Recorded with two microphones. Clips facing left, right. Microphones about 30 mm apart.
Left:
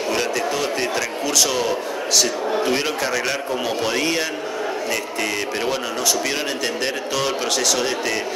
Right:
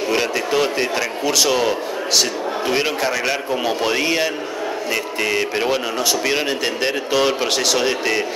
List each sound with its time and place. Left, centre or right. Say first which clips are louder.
0.1 s a man's voice: right 3 dB; centre